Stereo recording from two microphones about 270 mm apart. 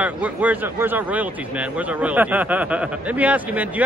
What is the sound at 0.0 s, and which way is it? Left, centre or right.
Speech, centre.